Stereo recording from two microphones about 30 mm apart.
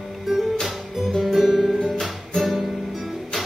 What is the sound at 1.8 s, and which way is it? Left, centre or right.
Music, centre.